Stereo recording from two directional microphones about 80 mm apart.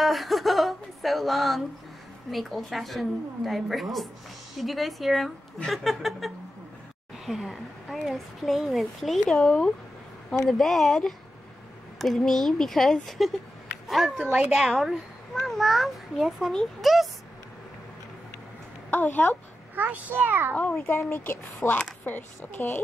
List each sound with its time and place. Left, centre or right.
0.0 s a child's voice: centre
18.9 s a woman's voice: left
19.7 s a child's voice: right
20.9 s speech: left
21.6 s a child's voice: centre
22.0 s speech: left